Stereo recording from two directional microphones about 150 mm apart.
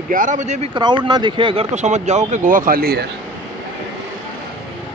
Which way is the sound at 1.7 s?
50° right (ahead or behind).